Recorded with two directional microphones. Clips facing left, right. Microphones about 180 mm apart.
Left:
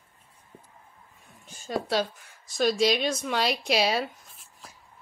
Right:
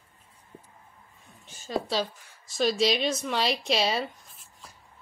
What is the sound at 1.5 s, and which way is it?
A woman's voice, centre (ahead or behind).